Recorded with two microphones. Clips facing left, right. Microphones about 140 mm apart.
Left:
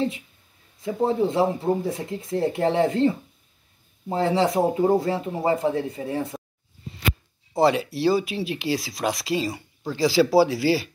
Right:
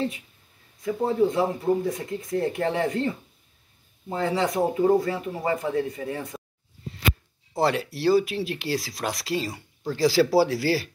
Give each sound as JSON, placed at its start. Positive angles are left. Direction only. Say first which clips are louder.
{"t": 0.8, "sound": "speech", "louder": "even", "side_deg": 25}
{"t": 7.5, "sound": "speech", "louder": "left 4 dB", "side_deg": 15}